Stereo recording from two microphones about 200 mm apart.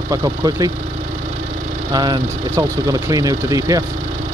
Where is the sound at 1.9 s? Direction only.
20° right (ahead or behind).